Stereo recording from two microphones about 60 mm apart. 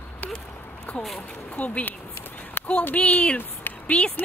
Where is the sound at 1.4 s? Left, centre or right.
Left.